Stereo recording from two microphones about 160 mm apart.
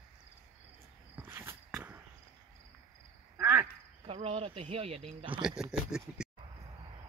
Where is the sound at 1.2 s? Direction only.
15° right (ahead or behind).